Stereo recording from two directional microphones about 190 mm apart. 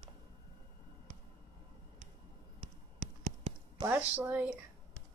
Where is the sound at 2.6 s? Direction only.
40° right (ahead or behind).